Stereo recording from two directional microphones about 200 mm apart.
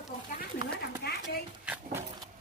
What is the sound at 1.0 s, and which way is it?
Speech, 50° left (ahead or behind).